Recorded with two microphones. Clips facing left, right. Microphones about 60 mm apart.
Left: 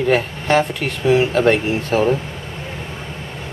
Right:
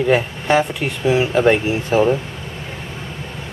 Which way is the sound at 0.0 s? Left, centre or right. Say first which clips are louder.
Right 1 dB; centre.